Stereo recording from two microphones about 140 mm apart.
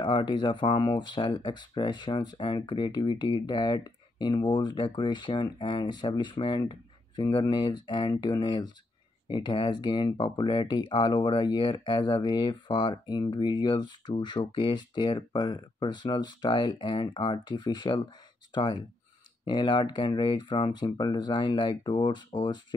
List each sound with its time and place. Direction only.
0.0 s speech: 35° left (ahead or behind)